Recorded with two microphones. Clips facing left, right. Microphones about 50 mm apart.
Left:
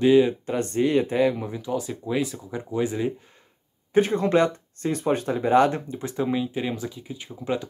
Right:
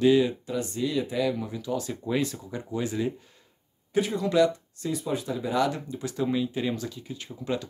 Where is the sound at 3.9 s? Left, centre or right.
Left.